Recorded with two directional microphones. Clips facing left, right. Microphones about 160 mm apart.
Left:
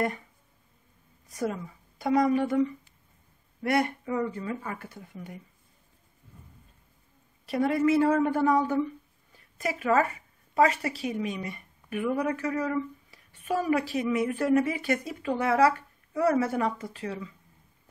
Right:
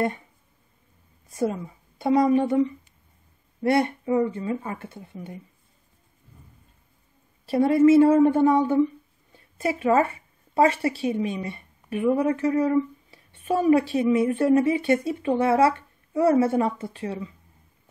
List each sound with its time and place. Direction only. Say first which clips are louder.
1.3 s speech: right 5 dB; 25° right (ahead or behind)
7.4 s a woman's voice: right 7 dB; 30° right (ahead or behind)